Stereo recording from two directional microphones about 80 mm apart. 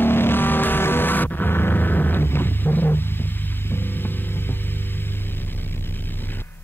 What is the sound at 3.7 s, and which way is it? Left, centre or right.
Hum, left.